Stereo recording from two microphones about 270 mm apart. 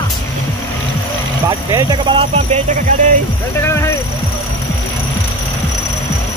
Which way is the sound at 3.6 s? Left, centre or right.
Centre.